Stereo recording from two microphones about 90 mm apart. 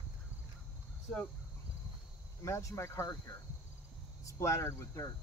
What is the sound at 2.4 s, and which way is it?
Speech, 35° left (ahead or behind).